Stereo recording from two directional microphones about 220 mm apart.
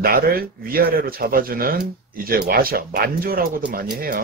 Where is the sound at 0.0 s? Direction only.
40° right (ahead or behind).